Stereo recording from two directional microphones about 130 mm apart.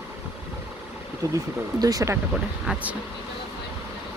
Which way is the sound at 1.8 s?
30° right (ahead or behind).